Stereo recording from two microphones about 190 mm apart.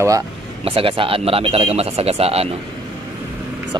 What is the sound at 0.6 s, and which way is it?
Speech, 30° right (ahead or behind).